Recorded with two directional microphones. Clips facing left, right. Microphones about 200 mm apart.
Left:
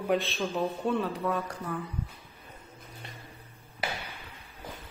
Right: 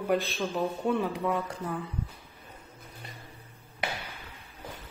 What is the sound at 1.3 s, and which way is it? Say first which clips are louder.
Speech: right 1 dB; 20° right (ahead or behind).